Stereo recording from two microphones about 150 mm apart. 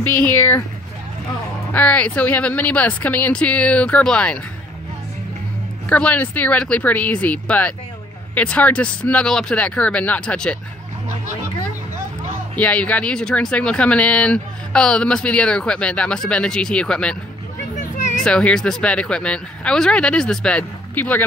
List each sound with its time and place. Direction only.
0.0 s speech: 10° left (ahead or behind)
1.7 s speech: 10° left (ahead or behind)
5.9 s speech: 10° left (ahead or behind)
12.5 s speech: 10° left (ahead or behind)
17.7 s a sound: 60° left (ahead or behind)
18.1 s speech: 5° left (ahead or behind)